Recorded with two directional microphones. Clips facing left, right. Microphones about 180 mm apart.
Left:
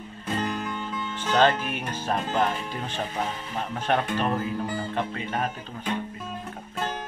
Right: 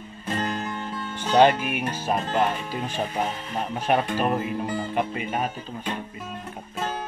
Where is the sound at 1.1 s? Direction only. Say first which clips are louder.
Right 4 dB; 15° right (ahead or behind).